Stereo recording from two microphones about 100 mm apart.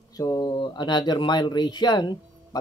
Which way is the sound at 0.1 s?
40° left (ahead or behind).